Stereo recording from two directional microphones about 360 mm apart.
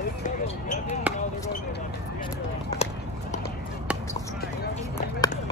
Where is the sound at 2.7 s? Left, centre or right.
Centre.